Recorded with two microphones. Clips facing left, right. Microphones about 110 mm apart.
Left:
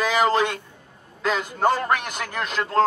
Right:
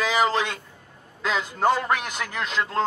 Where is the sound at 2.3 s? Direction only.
50° left (ahead or behind).